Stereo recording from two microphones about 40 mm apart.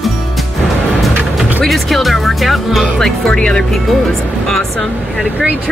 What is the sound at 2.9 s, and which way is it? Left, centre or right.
Speech, centre.